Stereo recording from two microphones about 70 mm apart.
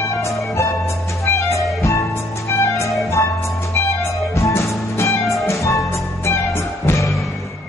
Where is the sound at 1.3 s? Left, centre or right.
Left.